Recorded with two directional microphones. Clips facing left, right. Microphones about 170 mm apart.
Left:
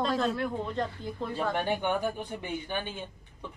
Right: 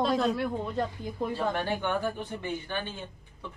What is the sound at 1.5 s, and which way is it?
Speech, 15° left (ahead or behind).